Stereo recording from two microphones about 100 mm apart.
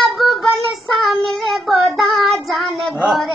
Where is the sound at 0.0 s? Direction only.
Centre (ahead or behind).